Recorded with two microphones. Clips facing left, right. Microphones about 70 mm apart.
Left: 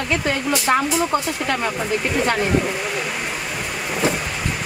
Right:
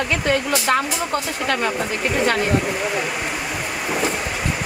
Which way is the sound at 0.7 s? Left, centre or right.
Centre.